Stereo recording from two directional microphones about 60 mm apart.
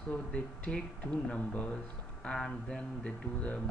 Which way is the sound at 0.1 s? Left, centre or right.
Centre.